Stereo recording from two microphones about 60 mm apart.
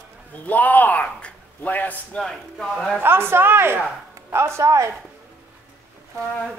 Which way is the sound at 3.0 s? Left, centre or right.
Right.